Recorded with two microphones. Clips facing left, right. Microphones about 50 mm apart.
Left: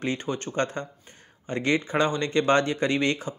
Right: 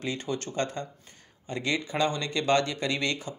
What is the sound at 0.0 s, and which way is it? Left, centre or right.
Speech, left.